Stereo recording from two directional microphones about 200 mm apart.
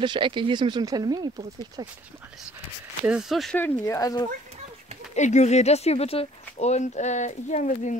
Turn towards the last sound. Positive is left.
turn(degrees=40)  # may be behind; listen again after turning